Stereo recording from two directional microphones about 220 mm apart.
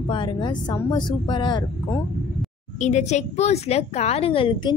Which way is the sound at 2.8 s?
30° left (ahead or behind).